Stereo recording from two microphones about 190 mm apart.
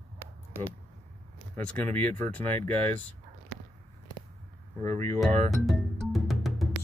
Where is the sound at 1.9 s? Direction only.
10° left (ahead or behind).